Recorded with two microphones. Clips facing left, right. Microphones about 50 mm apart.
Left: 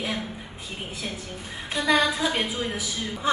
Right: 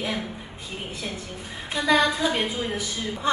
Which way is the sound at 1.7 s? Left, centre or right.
Centre.